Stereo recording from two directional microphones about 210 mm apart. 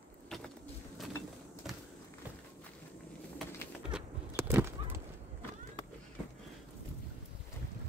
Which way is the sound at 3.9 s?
10° right (ahead or behind).